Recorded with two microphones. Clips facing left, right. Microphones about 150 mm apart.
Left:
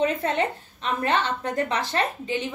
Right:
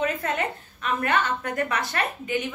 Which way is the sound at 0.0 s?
25° left (ahead or behind).